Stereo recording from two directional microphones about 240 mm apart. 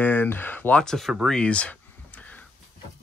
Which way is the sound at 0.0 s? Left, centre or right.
Centre.